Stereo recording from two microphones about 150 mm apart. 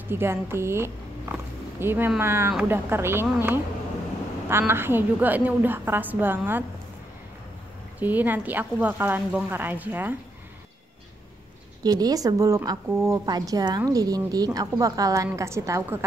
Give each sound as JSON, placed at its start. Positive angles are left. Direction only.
{"t": 0.1, "sound": "a woman's voice", "side_deg": -15}
{"t": 8.0, "sound": "a woman's voice", "side_deg": -10}
{"t": 11.8, "sound": "a woman's voice", "side_deg": -25}